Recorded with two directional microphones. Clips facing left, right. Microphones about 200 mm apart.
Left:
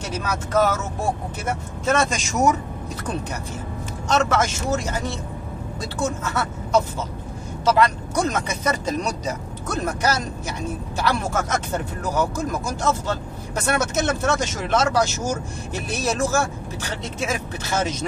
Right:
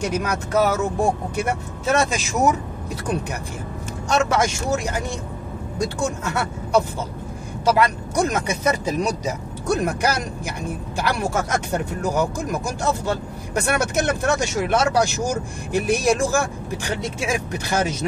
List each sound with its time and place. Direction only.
0.0 s speech: 15° right (ahead or behind)
4.1 s speech: 10° right (ahead or behind)